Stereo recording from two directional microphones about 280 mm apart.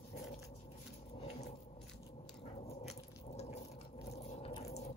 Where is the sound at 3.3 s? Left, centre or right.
Left.